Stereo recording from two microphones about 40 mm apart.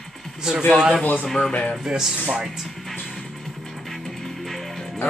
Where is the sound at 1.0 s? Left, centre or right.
Left.